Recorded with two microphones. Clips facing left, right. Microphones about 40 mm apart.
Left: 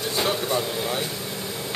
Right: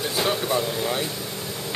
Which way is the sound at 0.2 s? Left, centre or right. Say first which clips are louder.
Right 1 dB; centre.